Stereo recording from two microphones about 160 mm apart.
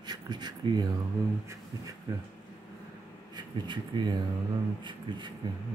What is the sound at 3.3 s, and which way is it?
Speech, 30° right (ahead or behind).